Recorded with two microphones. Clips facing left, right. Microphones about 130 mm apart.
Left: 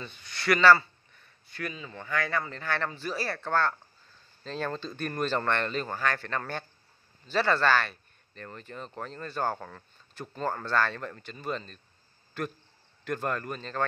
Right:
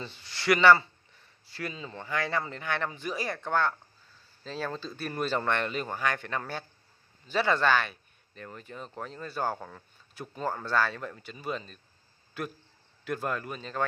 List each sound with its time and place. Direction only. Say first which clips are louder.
0.0 s speech: right 1 dB; 25° right (ahead or behind); by 13.8 s 5° right (ahead or behind)